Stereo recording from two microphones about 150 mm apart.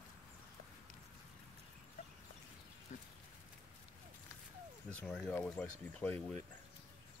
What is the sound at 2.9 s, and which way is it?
Livestock, 55° left (ahead or behind).